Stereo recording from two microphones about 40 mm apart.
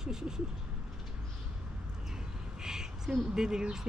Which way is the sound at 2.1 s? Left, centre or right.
Centre.